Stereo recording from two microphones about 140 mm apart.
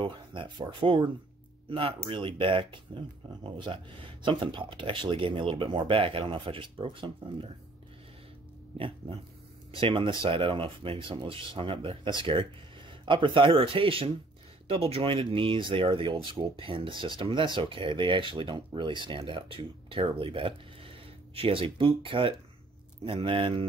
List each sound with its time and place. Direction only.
0.0 s speech: 35° right (ahead or behind)
8.7 s speech: 40° right (ahead or behind)